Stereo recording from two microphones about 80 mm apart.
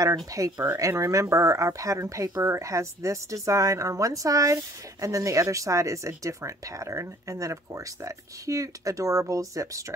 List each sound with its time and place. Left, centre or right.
0.3 s speech: right